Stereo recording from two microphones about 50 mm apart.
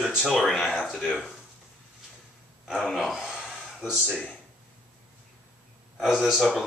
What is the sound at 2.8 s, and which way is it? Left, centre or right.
Speech, centre.